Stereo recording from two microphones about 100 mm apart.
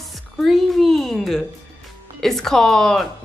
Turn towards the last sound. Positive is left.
turn(degrees=5)  # may be behind; listen again after turning